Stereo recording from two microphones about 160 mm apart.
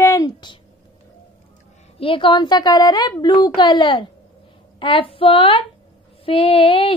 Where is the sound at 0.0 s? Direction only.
20° left (ahead or behind).